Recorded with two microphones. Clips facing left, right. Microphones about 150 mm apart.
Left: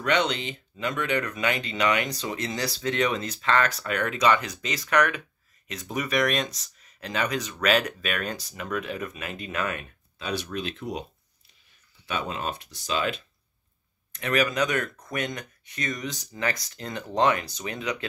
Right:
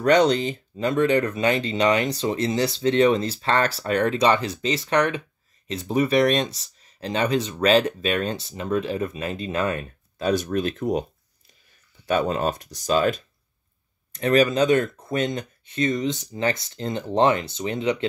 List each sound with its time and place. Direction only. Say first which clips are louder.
0.0 s speech: right 8 dB; 40° right (ahead or behind)
12.1 s speech: right 9 dB; 45° right (ahead or behind)
14.1 s speech: right 7 dB; 30° right (ahead or behind)